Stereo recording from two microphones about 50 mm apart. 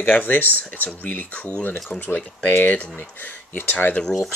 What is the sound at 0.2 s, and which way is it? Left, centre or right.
Speech, left.